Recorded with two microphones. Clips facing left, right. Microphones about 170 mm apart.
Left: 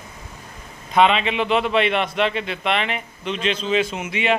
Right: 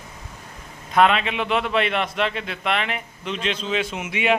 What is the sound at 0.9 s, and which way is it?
Speech, centre (ahead or behind).